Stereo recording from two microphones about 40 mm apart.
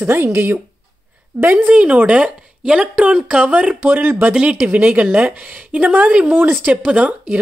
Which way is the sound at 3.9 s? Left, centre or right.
Right.